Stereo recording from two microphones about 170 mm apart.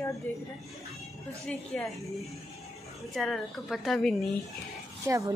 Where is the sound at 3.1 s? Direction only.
Centre (ahead or behind).